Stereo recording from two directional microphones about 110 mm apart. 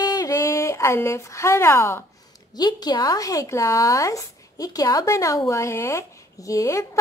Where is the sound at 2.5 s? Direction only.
40° left (ahead or behind).